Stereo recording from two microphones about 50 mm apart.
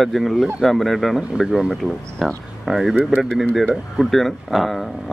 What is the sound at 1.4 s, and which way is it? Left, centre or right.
Speech, centre.